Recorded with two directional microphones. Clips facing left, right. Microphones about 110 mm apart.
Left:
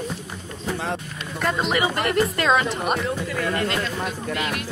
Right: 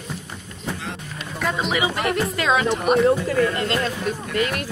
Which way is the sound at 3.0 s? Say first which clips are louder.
Right 7 dB; 40° right (ahead or behind).